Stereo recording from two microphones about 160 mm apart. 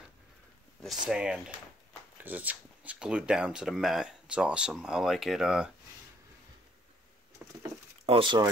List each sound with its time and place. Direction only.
0.8 s speech: 5° right (ahead or behind)
8.0 s speech: 35° right (ahead or behind)